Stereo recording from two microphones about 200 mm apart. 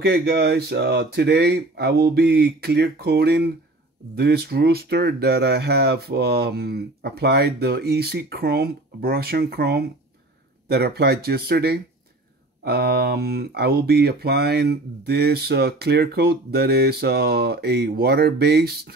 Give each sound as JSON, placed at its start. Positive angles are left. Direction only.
{"t": 0.0, "sound": "speech", "side_deg": -55}